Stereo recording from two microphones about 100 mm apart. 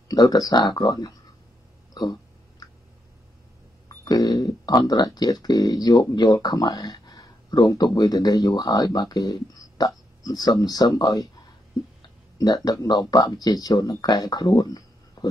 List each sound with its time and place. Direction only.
0.1 s speech: 40° left (ahead or behind)
2.0 s a sound: 40° left (ahead or behind)
4.0 s speech: 40° left (ahead or behind)
12.4 s speech: 45° left (ahead or behind)